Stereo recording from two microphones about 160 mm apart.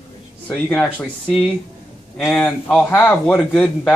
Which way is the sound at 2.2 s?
Centre (ahead or behind).